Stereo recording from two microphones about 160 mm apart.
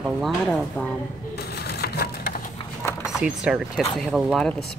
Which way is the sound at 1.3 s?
80° left.